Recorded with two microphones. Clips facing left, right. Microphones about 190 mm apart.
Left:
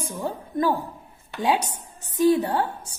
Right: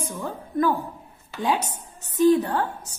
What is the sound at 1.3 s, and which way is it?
A woman's voice, 15° left (ahead or behind).